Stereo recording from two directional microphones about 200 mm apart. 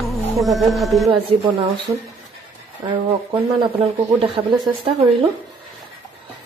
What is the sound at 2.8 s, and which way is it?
Speech, 20° right (ahead or behind).